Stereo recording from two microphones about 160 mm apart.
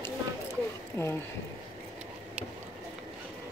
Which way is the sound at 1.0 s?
15° left (ahead or behind).